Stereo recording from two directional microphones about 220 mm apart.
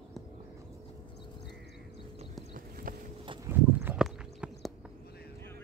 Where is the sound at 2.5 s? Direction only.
40° right (ahead or behind).